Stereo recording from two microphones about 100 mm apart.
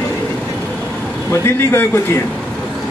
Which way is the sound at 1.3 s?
25° left (ahead or behind).